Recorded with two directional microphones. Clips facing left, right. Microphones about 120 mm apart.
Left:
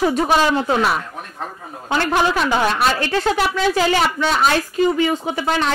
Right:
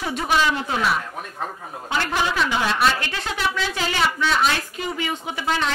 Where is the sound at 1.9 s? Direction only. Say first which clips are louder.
Left 6 dB; 45° left (ahead or behind).